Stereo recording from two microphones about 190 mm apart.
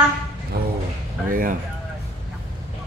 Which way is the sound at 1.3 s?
45° right (ahead or behind).